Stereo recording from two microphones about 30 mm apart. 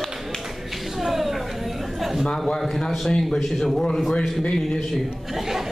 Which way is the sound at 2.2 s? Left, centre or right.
Centre.